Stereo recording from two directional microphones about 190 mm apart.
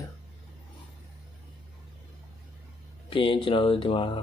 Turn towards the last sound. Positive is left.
turn(degrees=25)  # may be behind; listen again after turning